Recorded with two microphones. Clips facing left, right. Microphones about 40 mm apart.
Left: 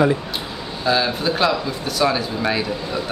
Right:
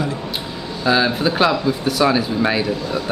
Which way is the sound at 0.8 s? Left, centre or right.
Centre.